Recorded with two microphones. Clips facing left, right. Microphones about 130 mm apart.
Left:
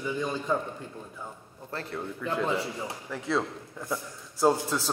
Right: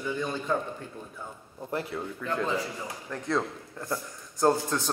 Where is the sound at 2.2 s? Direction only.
10° left (ahead or behind).